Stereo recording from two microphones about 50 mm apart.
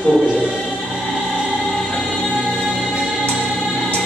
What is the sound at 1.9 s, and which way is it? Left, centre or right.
Music, centre.